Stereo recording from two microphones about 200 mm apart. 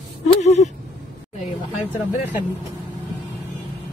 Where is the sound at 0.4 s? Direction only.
35° left (ahead or behind).